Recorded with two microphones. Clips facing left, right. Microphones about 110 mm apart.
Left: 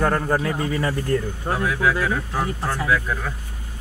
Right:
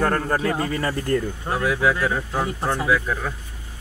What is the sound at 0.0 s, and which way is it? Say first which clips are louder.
Speech: even; 10° left (ahead or behind).